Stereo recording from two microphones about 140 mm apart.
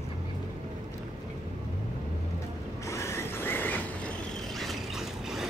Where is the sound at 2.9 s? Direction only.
20° left (ahead or behind).